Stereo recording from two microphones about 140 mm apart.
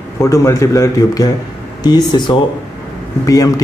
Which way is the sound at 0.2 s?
20° left (ahead or behind).